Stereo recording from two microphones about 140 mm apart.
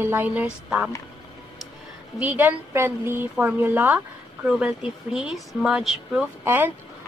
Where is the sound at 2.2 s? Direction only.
10° right (ahead or behind).